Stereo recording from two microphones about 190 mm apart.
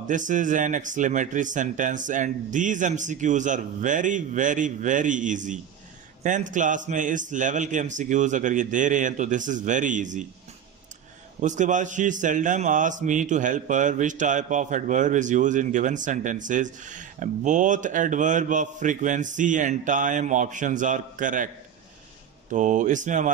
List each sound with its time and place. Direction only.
0.0 s a man's voice: 40° right (ahead or behind)
11.4 s a man's voice: 40° right (ahead or behind)
22.5 s a man's voice: 40° right (ahead or behind)